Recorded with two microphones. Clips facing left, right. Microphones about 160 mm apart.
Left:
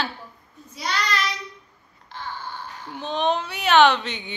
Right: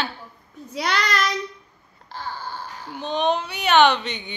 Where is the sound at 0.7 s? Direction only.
65° right (ahead or behind).